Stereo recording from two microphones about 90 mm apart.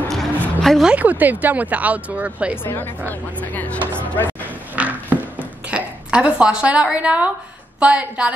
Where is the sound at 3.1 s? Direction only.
20° left (ahead or behind).